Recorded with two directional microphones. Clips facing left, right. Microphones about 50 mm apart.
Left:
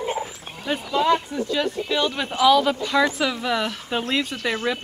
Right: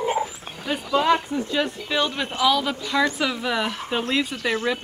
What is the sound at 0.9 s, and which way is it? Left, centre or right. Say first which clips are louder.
Speech: right 1 dB; right.